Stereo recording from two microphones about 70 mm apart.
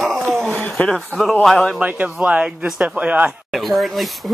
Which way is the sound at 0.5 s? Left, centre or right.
Centre.